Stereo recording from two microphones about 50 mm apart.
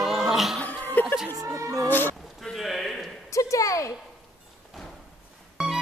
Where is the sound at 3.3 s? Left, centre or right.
Left.